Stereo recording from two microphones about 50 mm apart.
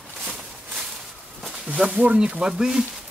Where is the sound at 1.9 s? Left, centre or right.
Right.